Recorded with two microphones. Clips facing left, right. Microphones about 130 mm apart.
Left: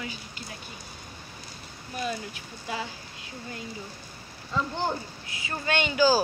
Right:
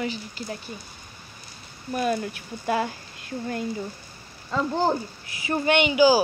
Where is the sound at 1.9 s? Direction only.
55° right (ahead or behind).